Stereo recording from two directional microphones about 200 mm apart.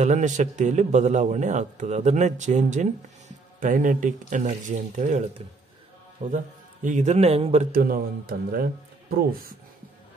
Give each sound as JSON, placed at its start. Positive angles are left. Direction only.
{"t": 0.0, "sound": "a man's voice", "side_deg": -35}
{"t": 6.3, "sound": "a man's voice", "side_deg": -40}
{"t": 7.7, "sound": "speech", "side_deg": -45}